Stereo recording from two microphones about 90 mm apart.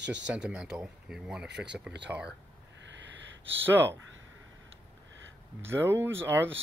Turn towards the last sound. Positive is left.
turn(degrees=-25)  # may be behind; listen again after turning